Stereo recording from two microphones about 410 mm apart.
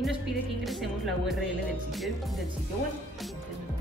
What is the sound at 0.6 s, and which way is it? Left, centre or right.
Music, centre.